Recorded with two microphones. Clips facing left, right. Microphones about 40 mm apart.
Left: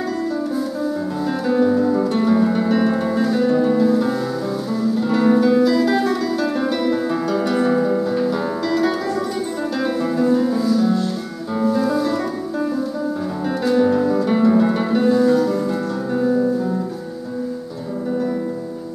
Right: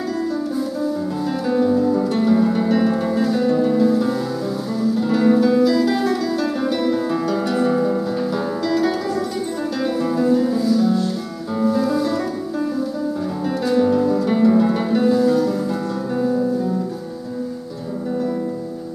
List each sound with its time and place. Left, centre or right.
1.5 s music: centre
10.0 s music: centre
13.7 s music: centre